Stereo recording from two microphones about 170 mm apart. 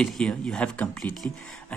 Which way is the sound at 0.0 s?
5° left (ahead or behind).